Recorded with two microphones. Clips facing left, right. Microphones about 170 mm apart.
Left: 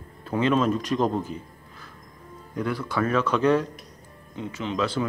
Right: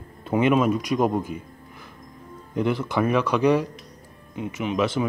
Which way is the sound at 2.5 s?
20° right (ahead or behind).